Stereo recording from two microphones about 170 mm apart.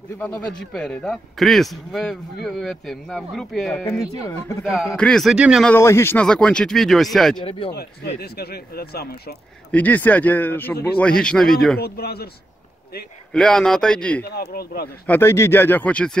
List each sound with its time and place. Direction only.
0.2 s a man's voice: 5° left (ahead or behind)
4.0 s speech: 20° left (ahead or behind)
4.6 s a man's voice: centre (ahead or behind)
5.7 s a man's voice: 15° left (ahead or behind)
7.4 s speech: 30° left (ahead or behind)
8.2 s speech: 65° left (ahead or behind)
9.7 s a man's voice: 10° left (ahead or behind)
11.8 s speech: 65° left (ahead or behind)
13.3 s a man's voice: 5° left (ahead or behind)
14.3 s speech: 70° left (ahead or behind)
15.0 s speech: 15° left (ahead or behind)